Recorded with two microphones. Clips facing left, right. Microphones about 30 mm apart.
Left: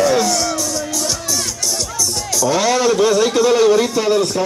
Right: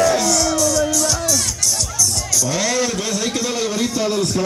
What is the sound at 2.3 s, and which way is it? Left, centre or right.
A man's voice, centre.